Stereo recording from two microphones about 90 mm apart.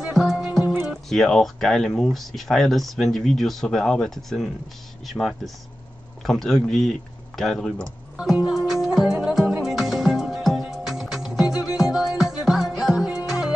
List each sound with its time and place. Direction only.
0.1 s music: 5° right (ahead or behind)
0.8 s speech: 5° left (ahead or behind)
8.2 s music: 5° right (ahead or behind)